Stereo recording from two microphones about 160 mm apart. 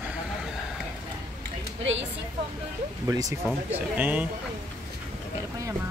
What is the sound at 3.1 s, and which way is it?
Speech, 20° right (ahead or behind).